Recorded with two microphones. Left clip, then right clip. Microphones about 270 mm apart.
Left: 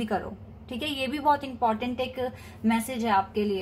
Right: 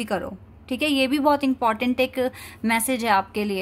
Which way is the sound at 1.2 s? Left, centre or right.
Right.